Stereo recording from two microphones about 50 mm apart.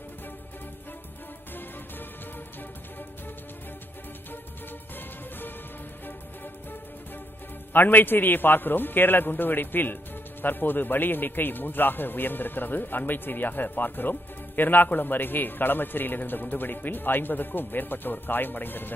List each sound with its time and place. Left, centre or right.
6.0 s music: left
7.7 s a man's voice: left